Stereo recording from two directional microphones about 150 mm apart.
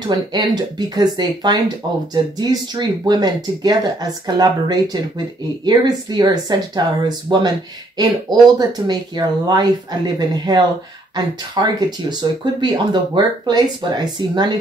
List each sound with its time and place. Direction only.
0.0 s speech: 30° right (ahead or behind)